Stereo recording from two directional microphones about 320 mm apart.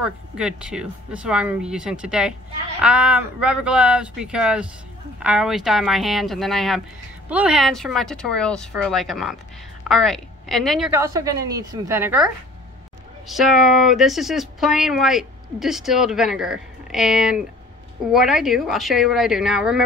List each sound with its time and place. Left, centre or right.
0.0 s speech: centre
13.3 s speech: centre